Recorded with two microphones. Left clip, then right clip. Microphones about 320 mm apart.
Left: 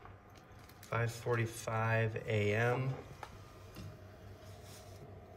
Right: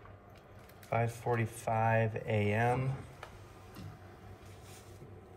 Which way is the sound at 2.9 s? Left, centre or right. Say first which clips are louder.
Right 1 dB; left.